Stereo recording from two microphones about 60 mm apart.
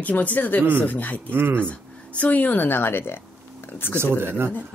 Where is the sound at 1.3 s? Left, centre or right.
Right.